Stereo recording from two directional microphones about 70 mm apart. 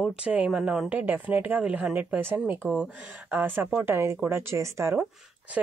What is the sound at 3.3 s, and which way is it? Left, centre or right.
Speech, right.